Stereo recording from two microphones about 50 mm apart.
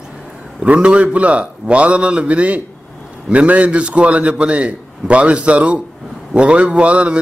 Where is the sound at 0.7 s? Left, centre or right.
Right.